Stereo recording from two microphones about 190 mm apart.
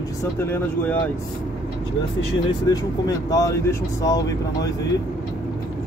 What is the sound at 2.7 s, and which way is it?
Speech, 20° left (ahead or behind).